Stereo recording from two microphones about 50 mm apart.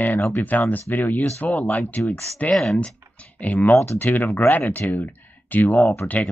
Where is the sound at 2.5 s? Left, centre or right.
Centre.